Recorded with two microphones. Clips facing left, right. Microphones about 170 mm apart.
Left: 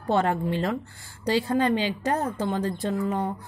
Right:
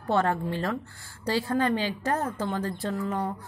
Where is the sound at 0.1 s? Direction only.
20° left (ahead or behind).